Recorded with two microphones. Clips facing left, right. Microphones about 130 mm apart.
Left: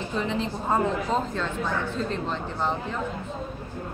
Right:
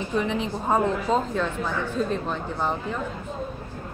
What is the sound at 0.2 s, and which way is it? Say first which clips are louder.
Speech: right 1 dB; 15° right (ahead or behind).